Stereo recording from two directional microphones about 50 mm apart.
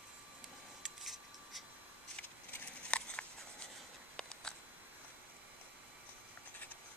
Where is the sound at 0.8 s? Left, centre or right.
Centre.